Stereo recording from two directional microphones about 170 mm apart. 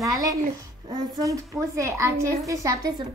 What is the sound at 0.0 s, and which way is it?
A child's voice, 20° right (ahead or behind).